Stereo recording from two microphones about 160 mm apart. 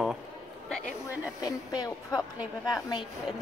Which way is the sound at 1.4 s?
25° left (ahead or behind).